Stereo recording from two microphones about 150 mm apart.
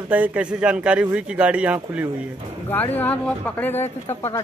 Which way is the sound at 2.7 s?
10° left (ahead or behind).